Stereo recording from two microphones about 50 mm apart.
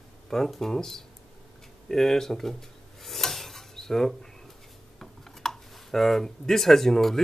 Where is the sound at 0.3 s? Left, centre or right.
Centre.